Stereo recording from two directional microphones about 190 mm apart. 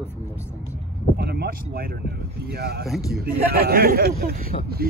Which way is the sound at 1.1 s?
55° right (ahead or behind).